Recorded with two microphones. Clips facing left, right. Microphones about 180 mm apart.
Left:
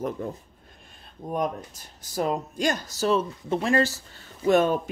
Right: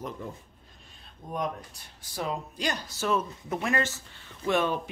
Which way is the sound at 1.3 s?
45° left (ahead or behind).